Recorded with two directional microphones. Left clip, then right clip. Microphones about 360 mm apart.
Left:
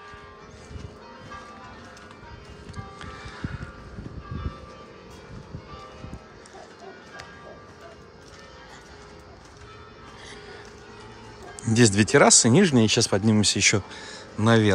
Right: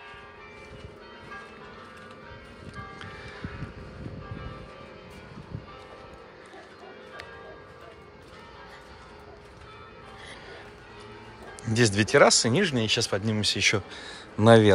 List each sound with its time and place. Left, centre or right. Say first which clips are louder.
2.7 s music: left 1 dB; centre
11.6 s speech: left 3 dB; centre